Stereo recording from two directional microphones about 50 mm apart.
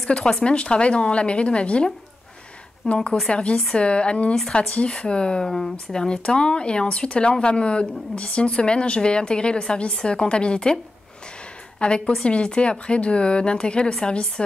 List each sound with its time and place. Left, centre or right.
0.1 s speech: centre
2.9 s speech: centre
5.5 s speech: centre
6.0 s speech: centre
11.8 s speech: left